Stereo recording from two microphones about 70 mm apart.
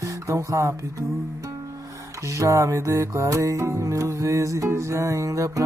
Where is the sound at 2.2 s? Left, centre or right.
Right.